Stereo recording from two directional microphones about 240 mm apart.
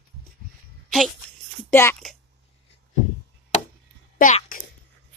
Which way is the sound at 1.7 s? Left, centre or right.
Centre.